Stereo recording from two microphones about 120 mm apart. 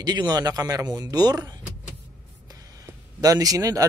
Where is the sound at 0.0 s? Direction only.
35° right (ahead or behind).